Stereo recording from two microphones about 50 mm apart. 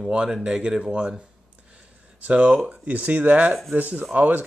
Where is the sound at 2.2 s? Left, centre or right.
Right.